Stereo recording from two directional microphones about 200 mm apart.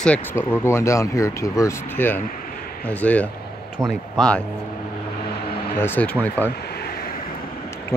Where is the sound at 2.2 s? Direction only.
45° left (ahead or behind).